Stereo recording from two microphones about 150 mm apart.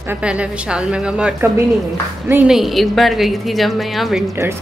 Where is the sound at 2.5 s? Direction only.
Centre (ahead or behind).